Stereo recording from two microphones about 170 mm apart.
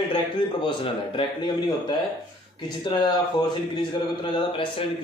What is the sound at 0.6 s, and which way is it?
A man's voice, 30° left (ahead or behind).